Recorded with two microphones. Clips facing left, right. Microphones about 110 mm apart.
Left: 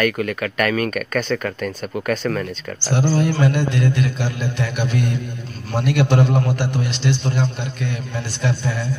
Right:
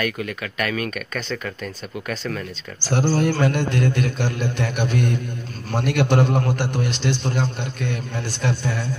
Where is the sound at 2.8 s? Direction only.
45° right (ahead or behind).